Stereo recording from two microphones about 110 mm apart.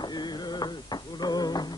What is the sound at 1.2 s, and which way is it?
Music, 40° left (ahead or behind).